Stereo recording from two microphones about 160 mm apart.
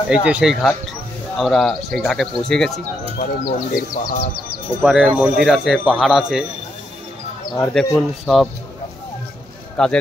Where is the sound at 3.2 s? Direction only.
60° left (ahead or behind).